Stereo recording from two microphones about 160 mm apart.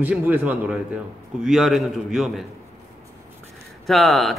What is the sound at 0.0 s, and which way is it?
A man's voice, 10° right (ahead or behind).